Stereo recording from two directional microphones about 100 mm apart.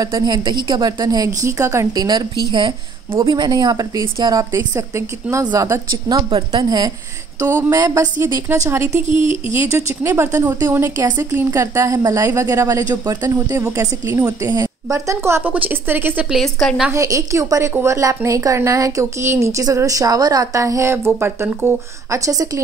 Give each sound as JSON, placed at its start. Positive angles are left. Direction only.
{"t": 0.0, "sound": "a woman's voice", "side_deg": -40}
{"t": 8.5, "sound": "a woman's voice", "side_deg": -25}
{"t": 16.3, "sound": "a woman's voice", "side_deg": 0}
{"t": 16.9, "sound": "a woman's voice", "side_deg": -30}